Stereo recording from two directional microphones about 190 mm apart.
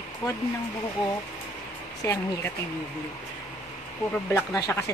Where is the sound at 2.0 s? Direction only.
15° left (ahead or behind).